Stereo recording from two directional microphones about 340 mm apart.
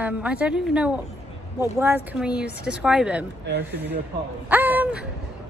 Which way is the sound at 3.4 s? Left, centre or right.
Right.